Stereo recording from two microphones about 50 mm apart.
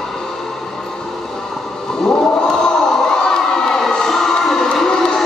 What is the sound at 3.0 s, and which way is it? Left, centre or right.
Crowd, centre.